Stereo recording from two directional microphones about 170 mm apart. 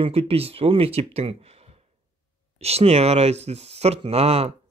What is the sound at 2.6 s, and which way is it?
Speech, 35° right (ahead or behind).